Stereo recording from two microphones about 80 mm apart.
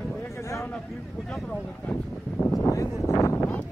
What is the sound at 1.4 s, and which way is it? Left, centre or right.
Speech, centre.